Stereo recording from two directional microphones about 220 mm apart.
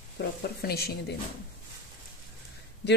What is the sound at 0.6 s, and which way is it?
Speech, 45° left (ahead or behind).